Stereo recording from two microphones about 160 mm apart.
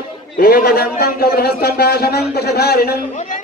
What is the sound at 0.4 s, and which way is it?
A man's voice, 70° left (ahead or behind).